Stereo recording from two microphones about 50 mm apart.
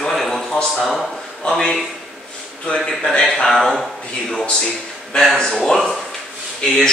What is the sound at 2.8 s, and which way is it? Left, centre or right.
Speech, centre.